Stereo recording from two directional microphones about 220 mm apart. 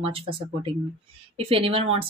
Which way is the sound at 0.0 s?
25° right (ahead or behind).